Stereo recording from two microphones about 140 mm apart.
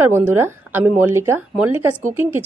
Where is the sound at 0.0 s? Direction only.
15° right (ahead or behind).